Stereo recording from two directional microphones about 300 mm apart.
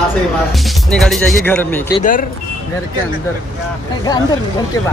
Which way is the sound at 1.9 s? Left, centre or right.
Left.